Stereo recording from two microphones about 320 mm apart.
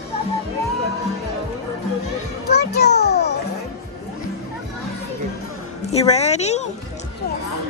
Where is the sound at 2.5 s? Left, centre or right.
Left.